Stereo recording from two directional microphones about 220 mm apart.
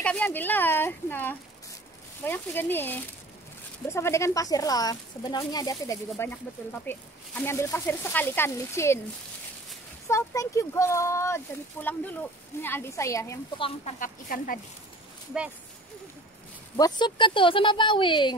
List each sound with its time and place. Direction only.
0.0 s speech: 5° left (ahead or behind)
10.0 s speech: 15° left (ahead or behind)
13.7 s a woman's voice: 30° left (ahead or behind)
16.7 s speech: 20° left (ahead or behind)